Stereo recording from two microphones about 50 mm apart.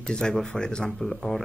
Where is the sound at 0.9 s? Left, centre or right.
Centre.